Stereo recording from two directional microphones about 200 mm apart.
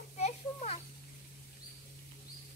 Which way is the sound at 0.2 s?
35° left (ahead or behind).